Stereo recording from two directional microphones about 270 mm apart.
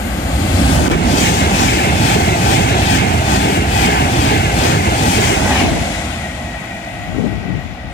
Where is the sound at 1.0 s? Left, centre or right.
Left.